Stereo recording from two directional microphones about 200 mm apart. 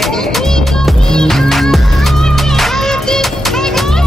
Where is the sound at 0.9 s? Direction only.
Centre (ahead or behind).